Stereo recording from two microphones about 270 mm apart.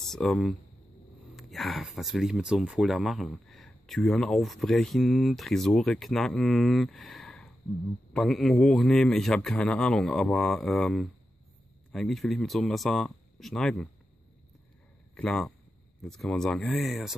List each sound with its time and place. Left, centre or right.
0.0 s speech: centre
15.1 s speech: centre